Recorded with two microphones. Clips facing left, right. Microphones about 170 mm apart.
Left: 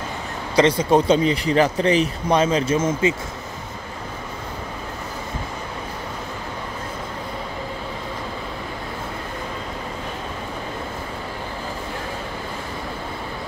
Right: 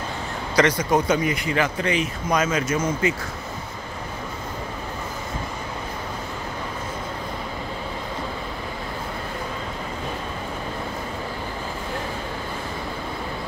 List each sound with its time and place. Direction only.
0.6 s speech: 25° left (ahead or behind)